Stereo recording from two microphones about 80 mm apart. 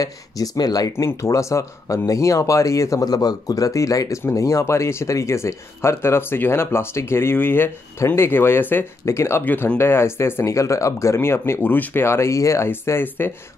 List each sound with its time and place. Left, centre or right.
0.0 s speech: left
0.9 s speech: left
9.4 s speech: left
9.8 s speech: left
12.6 s speech: left